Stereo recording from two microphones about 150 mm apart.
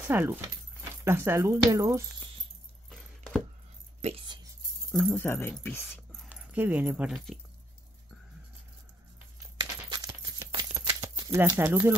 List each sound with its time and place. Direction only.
0.1 s speech: 15° right (ahead or behind)
4.0 s speech: 45° right (ahead or behind)
5.1 s speech: 15° left (ahead or behind)
6.2 s dog: 10° right (ahead or behind)
7.1 s speech: centre (ahead or behind)
9.6 s a sound: 25° right (ahead or behind)